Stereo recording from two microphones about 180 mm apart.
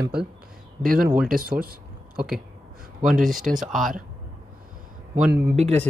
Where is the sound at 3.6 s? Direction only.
Centre (ahead or behind).